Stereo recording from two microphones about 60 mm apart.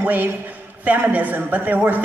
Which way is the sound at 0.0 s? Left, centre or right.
Right.